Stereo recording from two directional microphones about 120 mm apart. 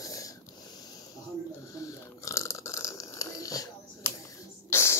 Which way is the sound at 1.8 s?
25° left (ahead or behind).